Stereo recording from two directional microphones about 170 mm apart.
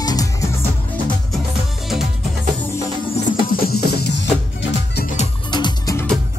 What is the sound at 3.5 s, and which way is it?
Music, 65° left (ahead or behind).